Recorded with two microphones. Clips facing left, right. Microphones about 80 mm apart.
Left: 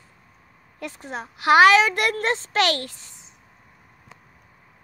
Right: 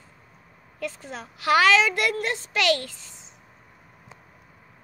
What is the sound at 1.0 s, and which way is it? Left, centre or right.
A woman's voice, left.